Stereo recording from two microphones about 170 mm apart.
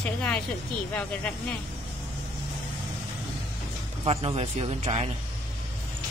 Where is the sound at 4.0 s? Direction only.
35° right (ahead or behind).